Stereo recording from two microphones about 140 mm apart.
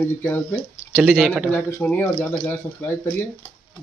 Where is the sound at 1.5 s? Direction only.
10° left (ahead or behind).